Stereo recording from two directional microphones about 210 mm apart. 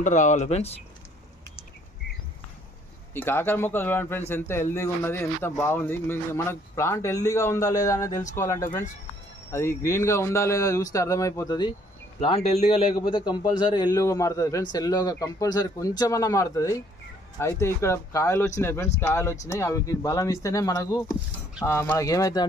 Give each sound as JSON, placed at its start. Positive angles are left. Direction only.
{"t": 0.0, "sound": "speech", "side_deg": 35}
{"t": 3.2, "sound": "a man's voice", "side_deg": 10}